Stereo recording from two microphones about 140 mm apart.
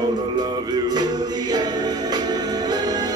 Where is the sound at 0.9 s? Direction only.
30° right (ahead or behind).